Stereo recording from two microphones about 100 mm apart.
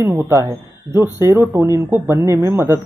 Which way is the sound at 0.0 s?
25° right (ahead or behind).